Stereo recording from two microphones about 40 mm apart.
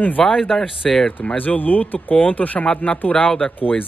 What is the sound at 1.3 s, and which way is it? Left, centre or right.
Speech, left.